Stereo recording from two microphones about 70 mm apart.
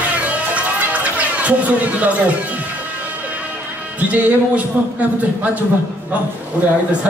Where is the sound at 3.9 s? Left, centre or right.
Right.